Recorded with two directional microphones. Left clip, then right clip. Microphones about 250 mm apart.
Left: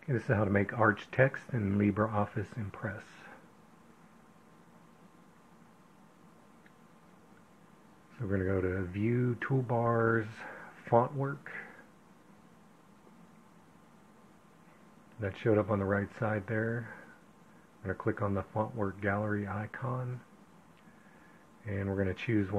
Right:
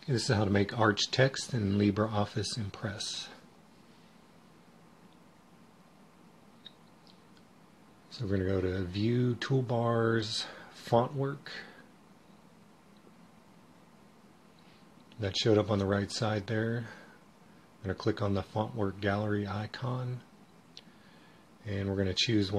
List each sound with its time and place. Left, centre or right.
0.1 s speech: centre
8.2 s speech: centre
15.1 s speech: centre
17.8 s speech: centre
21.6 s speech: centre